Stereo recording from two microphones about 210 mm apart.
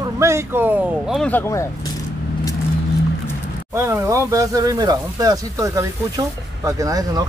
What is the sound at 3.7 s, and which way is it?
Speech, 10° right (ahead or behind).